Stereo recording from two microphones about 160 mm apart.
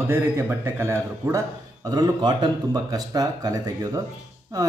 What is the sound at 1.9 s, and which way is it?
Speech, 25° right (ahead or behind).